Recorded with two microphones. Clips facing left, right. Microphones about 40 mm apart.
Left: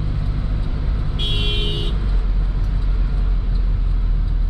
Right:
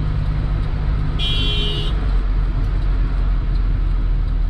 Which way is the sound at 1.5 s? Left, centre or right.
Centre.